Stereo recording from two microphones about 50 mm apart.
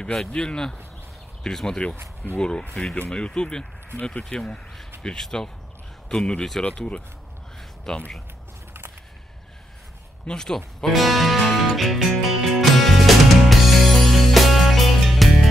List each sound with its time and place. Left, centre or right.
0.3 s speech: centre
7.9 s speech: centre
10.2 s speech: centre
10.9 s music: centre